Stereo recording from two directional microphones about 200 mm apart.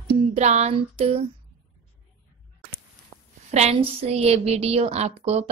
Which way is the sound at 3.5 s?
30° right (ahead or behind).